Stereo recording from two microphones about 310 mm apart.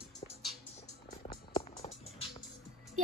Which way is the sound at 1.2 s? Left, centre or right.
Centre.